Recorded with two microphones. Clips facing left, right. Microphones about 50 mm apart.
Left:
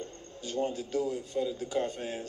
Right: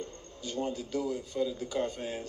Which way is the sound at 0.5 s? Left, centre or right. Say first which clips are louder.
Left 2 dB; left.